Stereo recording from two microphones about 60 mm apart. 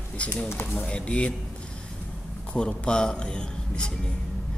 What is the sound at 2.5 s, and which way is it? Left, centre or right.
Speech, centre.